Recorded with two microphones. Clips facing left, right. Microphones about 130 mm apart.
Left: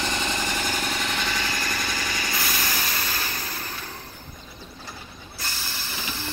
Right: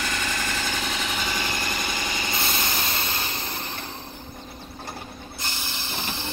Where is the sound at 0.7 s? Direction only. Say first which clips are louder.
Left 1 dB; centre (ahead or behind); by 3.7 s 25° right (ahead or behind).